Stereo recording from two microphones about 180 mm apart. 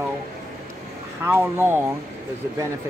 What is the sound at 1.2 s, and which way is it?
Speech, 10° right (ahead or behind).